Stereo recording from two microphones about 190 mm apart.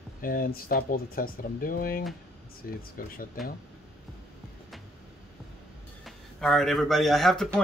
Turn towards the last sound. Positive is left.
turn(degrees=0)  # may be behind; listen again after turning